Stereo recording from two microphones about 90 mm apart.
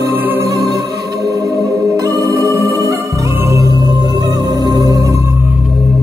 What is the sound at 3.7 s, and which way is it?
Music, 50° right (ahead or behind).